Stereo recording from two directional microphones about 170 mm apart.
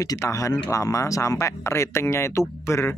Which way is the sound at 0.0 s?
20° left (ahead or behind).